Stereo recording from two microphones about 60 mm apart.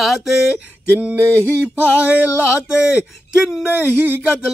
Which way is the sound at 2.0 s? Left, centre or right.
Right.